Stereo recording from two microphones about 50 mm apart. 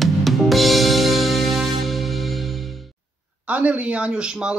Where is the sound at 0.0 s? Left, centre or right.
Centre.